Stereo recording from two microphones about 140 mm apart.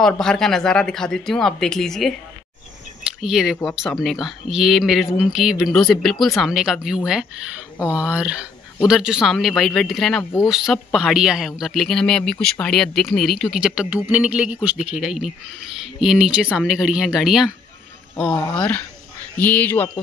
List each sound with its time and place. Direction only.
0.0 s speech: 5° left (ahead or behind)
3.0 s a sound: 5° right (ahead or behind)
4.0 s speech: centre (ahead or behind)